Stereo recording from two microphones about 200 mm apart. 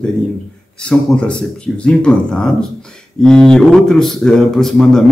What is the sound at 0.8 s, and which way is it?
Speech, 5° left (ahead or behind).